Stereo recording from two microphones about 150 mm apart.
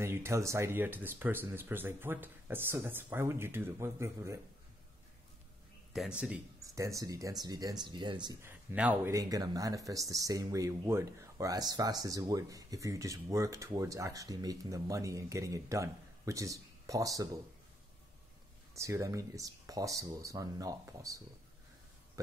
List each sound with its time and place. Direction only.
0.0 s speech: 15° right (ahead or behind)
5.9 s speech: 5° right (ahead or behind)
6.6 s speech: 20° right (ahead or behind)
8.4 s speech: 10° right (ahead or behind)
9.1 s speech: 25° right (ahead or behind)
18.8 s speech: 20° right (ahead or behind)